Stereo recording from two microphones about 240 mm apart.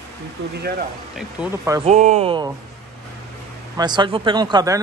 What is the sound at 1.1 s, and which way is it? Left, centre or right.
Speech, centre.